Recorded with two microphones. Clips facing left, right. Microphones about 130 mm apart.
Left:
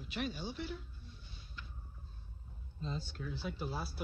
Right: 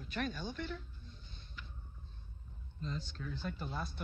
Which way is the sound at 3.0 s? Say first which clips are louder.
Left 1 dB; 10° left (ahead or behind).